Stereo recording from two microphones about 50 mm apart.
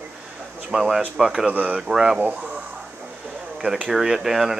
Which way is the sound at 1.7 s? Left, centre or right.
Centre.